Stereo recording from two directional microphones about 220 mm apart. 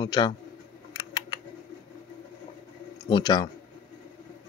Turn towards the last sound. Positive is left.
turn(degrees=20)  # may be behind; listen again after turning